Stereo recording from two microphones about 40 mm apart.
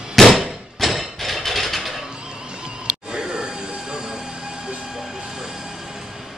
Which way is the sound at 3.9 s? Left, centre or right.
Centre.